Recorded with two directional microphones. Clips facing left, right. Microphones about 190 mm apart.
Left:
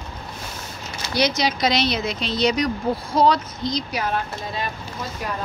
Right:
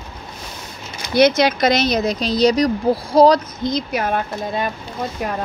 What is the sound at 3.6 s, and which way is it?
Speech, 55° right (ahead or behind).